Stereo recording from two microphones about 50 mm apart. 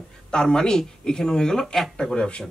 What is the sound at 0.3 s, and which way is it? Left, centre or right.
Speech, centre.